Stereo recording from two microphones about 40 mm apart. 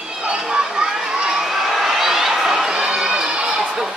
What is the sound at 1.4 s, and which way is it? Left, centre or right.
Crowd, centre.